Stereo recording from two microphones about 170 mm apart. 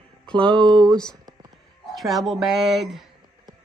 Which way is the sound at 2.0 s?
Centre (ahead or behind).